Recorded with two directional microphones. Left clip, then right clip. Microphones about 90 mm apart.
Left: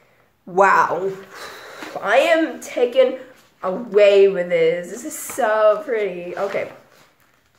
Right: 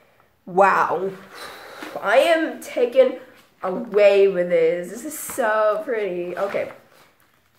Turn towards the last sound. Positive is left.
turn(degrees=0)  # may be behind; listen again after turning